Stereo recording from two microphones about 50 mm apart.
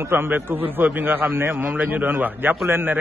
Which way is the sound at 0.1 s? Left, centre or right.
Right.